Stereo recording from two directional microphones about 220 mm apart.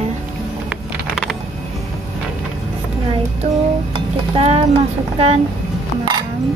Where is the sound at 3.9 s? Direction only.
25° right (ahead or behind).